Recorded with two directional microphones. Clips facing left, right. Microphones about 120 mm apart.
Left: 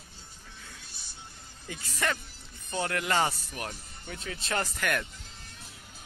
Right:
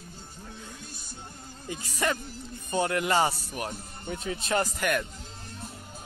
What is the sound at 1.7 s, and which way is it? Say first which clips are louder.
Speech: right 3 dB; 15° right (ahead or behind).